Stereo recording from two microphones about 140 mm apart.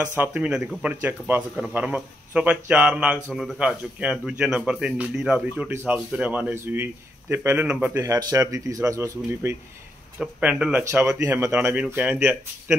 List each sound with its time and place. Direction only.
0.2 s speech: 10° right (ahead or behind)
10.8 s speech: 20° right (ahead or behind)